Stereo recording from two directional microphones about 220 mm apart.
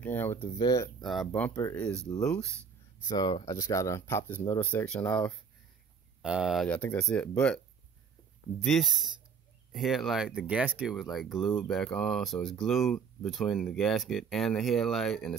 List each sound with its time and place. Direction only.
0.0 s a sound: 10° left (ahead or behind)
0.6 s speech: 15° left (ahead or behind)
1.0 s speech: centre (ahead or behind)
3.1 s speech: 20° left (ahead or behind); by 15.3 s centre (ahead or behind)